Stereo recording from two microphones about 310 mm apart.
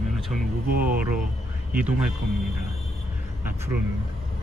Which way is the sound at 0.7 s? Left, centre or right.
Right.